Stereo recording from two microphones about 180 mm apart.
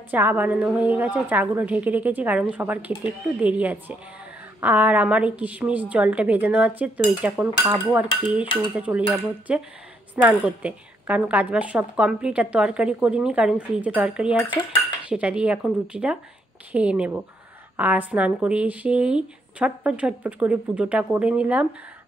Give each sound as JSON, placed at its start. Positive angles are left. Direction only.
{"t": 0.1, "sound": "a woman's voice", "side_deg": -10}